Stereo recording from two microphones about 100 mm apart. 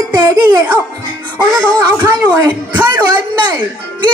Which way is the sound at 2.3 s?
45° right (ahead or behind).